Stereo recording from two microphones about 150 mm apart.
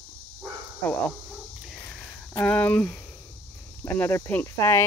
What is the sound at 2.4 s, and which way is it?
Speech, 10° left (ahead or behind).